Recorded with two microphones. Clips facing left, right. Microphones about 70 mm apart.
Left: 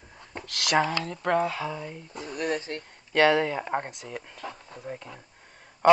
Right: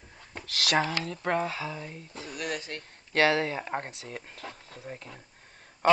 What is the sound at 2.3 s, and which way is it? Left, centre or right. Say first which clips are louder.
Speech: left 5 dB; left.